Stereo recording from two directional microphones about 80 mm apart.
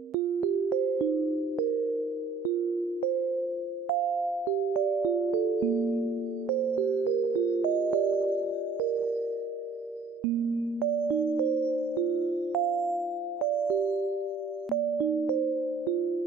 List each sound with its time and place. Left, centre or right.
0.1 s music: centre
5.7 s music: right
7.8 s music: centre
11.1 s music: centre
12.5 s music: centre